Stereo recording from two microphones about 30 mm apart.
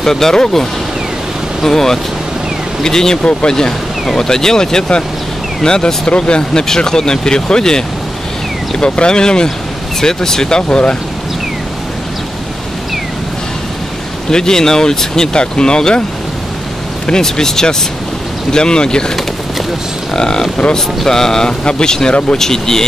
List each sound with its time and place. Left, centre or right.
0.0 s speech: centre
4.2 s speech: centre
6.0 s speech: left
6.7 s speech: centre
10.7 s speech: left
14.3 s speech: centre
17.1 s speech: centre
20.2 s speech: left
20.7 s speech: centre